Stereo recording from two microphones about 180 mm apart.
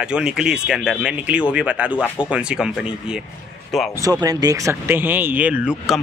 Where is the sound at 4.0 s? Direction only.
20° right (ahead or behind).